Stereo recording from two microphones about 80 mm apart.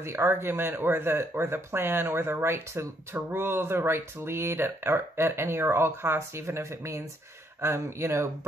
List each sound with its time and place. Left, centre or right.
0.0 s speech: right